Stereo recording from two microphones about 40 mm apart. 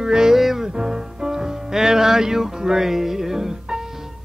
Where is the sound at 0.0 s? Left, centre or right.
Centre.